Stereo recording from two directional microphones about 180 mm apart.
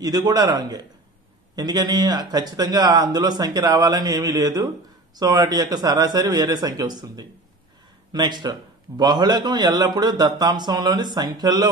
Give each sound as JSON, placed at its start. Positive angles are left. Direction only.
{"t": 0.0, "sound": "a man's voice", "side_deg": -20}